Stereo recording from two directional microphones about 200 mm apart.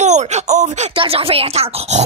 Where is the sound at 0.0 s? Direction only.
35° right (ahead or behind).